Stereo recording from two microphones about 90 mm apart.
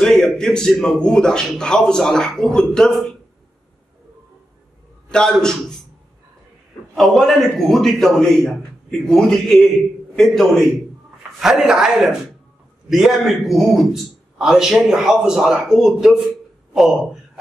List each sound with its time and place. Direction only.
0.0 s speech: 5° left (ahead or behind)
5.1 s speech: 10° left (ahead or behind)
7.0 s a man's voice: centre (ahead or behind)